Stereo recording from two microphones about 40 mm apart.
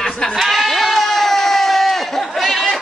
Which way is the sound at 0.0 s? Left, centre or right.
Centre.